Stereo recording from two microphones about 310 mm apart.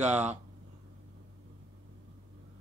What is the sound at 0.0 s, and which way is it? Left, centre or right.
Speech, right.